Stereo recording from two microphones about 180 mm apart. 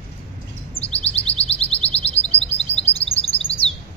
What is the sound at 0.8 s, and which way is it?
Chirp, 35° left (ahead or behind).